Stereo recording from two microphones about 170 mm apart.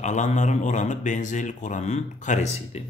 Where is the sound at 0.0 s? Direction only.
45° left (ahead or behind).